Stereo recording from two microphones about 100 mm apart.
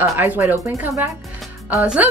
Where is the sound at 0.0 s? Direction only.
25° right (ahead or behind).